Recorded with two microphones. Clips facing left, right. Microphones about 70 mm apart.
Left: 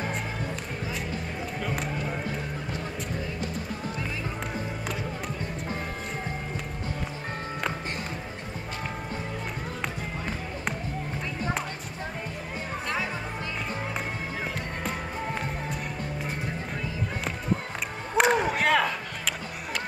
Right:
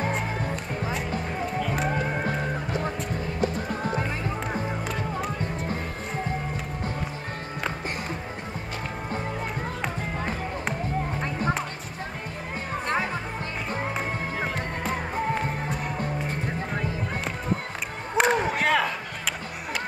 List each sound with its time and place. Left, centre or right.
1.9 s music: right
3.3 s music: right
12.8 s music: right
14.8 s music: centre
18.1 s music: centre